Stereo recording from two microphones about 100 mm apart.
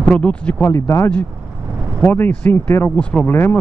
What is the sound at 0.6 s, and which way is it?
Speech, 30° left (ahead or behind).